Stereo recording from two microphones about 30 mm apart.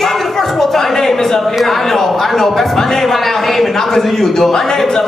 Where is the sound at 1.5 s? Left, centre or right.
Centre.